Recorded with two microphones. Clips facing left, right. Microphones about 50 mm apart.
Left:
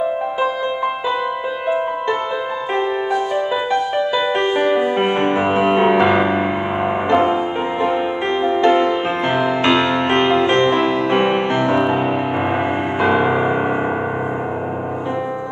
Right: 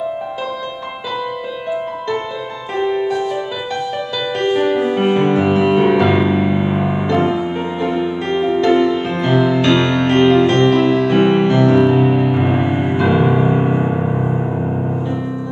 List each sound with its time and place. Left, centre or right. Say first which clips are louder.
2.7 s music: right 3 dB; left
4.4 s music: right 4 dB; centre